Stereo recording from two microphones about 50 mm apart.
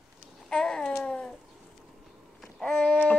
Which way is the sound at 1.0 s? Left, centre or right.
Centre.